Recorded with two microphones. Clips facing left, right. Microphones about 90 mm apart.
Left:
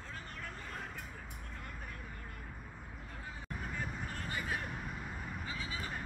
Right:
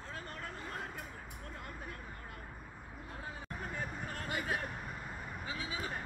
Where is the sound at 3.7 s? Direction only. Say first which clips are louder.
Even; 40° right (ahead or behind).